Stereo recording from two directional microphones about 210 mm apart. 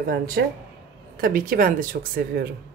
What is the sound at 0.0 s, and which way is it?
Speech, 45° right (ahead or behind).